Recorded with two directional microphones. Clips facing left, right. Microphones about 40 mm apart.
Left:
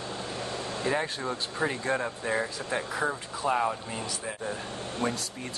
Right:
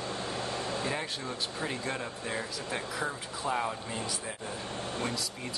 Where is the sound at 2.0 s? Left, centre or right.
Left.